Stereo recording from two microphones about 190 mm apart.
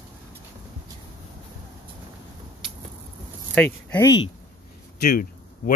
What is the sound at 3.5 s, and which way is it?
Speech, 10° left (ahead or behind).